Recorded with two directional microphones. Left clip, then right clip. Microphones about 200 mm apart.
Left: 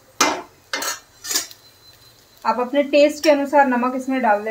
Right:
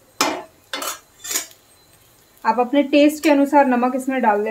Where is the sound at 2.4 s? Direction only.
50° right (ahead or behind).